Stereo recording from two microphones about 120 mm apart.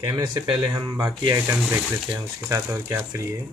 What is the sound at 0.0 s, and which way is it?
Speech, 30° right (ahead or behind).